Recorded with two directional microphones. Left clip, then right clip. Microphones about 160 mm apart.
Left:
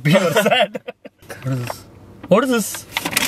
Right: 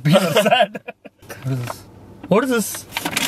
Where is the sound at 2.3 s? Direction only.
10° left (ahead or behind).